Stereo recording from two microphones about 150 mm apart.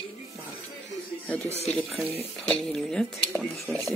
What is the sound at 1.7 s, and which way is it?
Speech, 5° left (ahead or behind).